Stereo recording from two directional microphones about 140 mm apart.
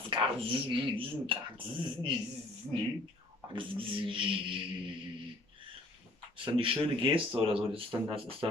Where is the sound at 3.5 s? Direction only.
40° right (ahead or behind).